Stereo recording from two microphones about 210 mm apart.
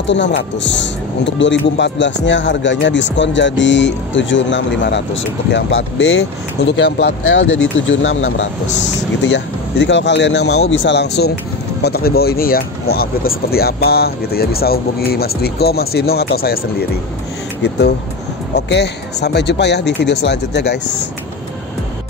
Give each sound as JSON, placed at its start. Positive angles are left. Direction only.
{"t": 0.0, "sound": "speech", "side_deg": 60}
{"t": 18.5, "sound": "speech", "side_deg": 55}